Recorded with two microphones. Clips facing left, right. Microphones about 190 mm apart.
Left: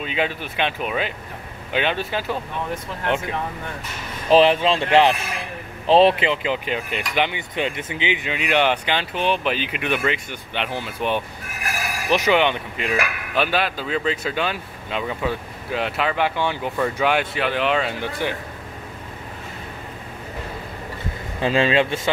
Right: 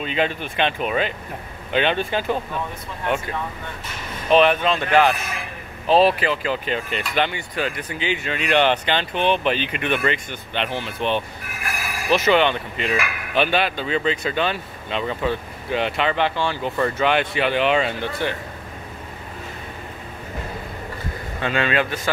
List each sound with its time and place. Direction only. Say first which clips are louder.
0.0 s speech: right 2 dB; 5° left (ahead or behind)
4.3 s speech: left 1 dB; 30° left (ahead or behind); by 17.9 s centre (ahead or behind)
18.2 s speech: even; 10° left (ahead or behind)
21.4 s speech: left 3 dB; 30° left (ahead or behind)